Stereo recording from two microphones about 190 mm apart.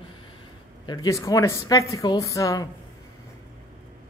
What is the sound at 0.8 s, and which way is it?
Speech, 20° left (ahead or behind).